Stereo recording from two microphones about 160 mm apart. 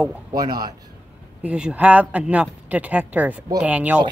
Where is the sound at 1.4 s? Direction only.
5° right (ahead or behind).